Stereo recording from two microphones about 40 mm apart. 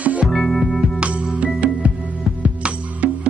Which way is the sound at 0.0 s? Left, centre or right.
Right.